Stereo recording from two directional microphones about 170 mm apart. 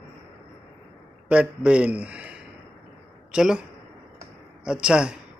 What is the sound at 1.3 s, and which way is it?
A man's voice, 5° right (ahead or behind).